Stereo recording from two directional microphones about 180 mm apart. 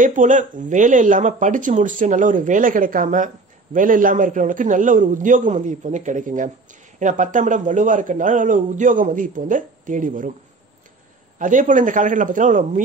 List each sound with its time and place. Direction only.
0.0 s a man's voice: 45° right (ahead or behind)
11.3 s a man's voice: 45° right (ahead or behind)